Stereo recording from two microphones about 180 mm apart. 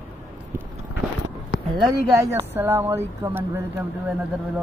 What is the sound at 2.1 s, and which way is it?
Speech, 15° right (ahead or behind).